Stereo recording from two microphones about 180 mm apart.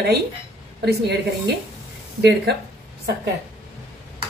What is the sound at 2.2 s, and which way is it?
Speech, 70° right (ahead or behind).